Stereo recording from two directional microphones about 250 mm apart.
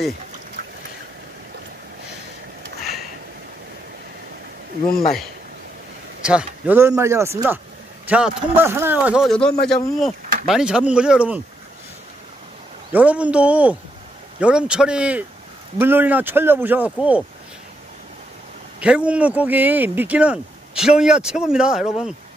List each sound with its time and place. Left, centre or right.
6.2 s speech: centre
12.9 s speech: centre
18.8 s speech: centre